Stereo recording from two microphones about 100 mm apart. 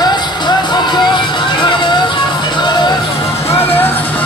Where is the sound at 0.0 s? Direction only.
45° left (ahead or behind).